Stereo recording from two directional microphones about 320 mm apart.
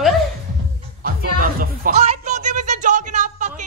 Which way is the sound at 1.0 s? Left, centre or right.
Right.